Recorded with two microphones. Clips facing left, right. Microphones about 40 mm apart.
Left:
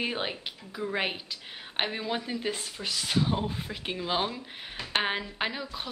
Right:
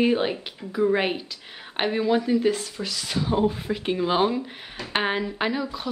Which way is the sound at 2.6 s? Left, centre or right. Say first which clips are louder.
Right 3 dB; left.